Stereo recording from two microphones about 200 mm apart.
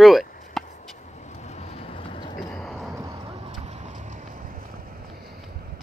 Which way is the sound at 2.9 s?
20° right (ahead or behind).